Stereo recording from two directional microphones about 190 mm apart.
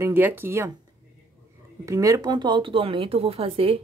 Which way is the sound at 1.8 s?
15° right (ahead or behind).